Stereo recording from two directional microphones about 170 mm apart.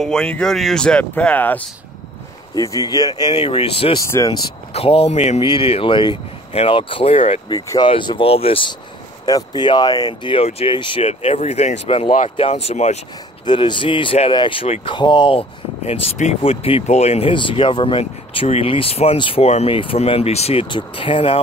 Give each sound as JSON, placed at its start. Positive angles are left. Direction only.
{"t": 0.0, "sound": "speech", "side_deg": 5}
{"t": 2.5, "sound": "speech", "side_deg": 20}
{"t": 4.0, "sound": "speech", "side_deg": 20}
{"t": 4.7, "sound": "speech", "side_deg": 35}
{"t": 7.5, "sound": "speech", "side_deg": 25}
{"t": 13.5, "sound": "speech", "side_deg": 30}